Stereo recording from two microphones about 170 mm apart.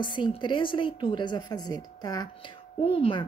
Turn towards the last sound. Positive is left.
turn(degrees=30)  # may be behind; listen again after turning